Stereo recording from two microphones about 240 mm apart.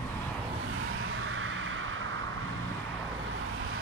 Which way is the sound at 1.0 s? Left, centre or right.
Right.